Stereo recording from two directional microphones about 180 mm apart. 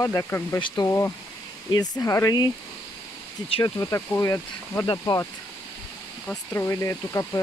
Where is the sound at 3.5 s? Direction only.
20° left (ahead or behind).